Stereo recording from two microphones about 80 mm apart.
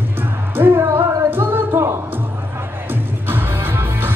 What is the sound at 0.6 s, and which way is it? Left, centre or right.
Music, right.